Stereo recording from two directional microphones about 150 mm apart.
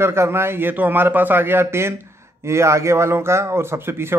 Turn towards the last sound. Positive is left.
turn(degrees=-15)  # may be behind; listen again after turning